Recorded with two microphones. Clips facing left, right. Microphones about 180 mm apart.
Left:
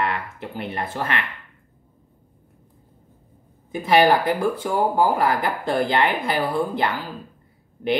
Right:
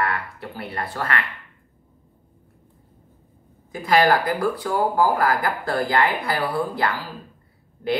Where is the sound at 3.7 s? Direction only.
20° left (ahead or behind).